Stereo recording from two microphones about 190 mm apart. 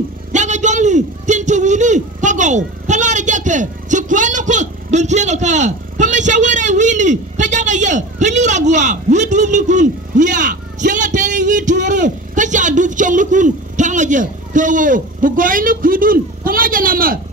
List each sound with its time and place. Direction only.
0.3 s a man's voice: 40° right (ahead or behind)